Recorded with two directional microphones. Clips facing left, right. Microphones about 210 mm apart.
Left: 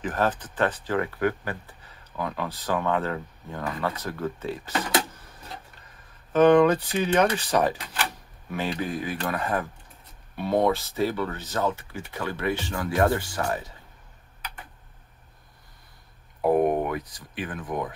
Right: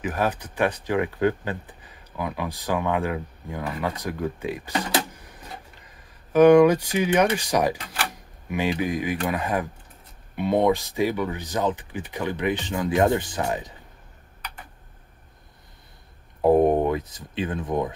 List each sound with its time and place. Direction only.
0.0 s speech: 10° right (ahead or behind)
5.1 s a sound: 15° right (ahead or behind)
6.3 s speech: 10° right (ahead or behind)
16.3 s speech: 25° right (ahead or behind)